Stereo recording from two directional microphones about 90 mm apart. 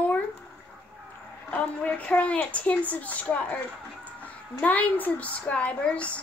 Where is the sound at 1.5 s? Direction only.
15° left (ahead or behind).